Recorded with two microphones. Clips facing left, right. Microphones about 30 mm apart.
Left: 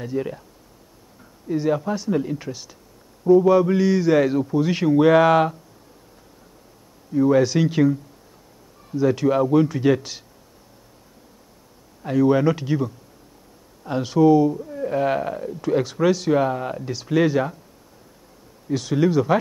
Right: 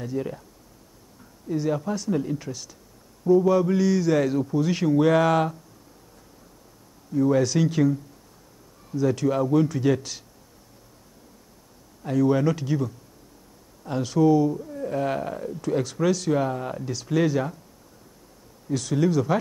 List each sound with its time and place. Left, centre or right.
0.0 s speech: centre
1.5 s speech: centre
7.1 s speech: centre
12.0 s speech: centre
18.7 s speech: centre